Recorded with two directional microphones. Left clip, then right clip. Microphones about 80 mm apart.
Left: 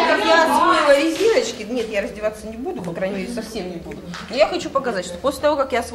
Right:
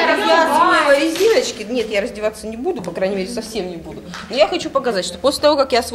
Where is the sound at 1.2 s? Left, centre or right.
Centre.